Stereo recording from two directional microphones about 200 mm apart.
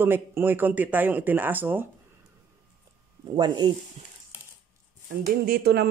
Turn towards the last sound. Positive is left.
turn(degrees=-55)  # may be behind; listen again after turning